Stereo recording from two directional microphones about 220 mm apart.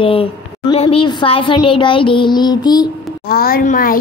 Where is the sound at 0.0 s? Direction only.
25° left (ahead or behind).